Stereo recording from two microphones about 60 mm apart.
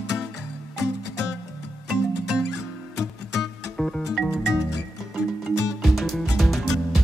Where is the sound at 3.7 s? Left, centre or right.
Centre.